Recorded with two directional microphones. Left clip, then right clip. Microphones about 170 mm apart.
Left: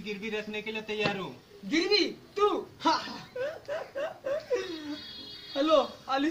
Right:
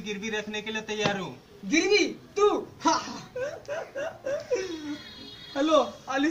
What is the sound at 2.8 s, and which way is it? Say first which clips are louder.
A woman's voice: right 2 dB; 5° right (ahead or behind).